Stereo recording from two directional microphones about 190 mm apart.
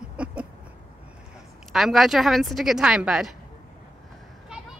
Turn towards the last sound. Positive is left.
turn(degrees=-5)  # may be behind; listen again after turning